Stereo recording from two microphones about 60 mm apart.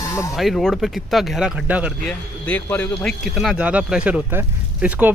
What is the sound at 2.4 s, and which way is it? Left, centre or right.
Speech, left.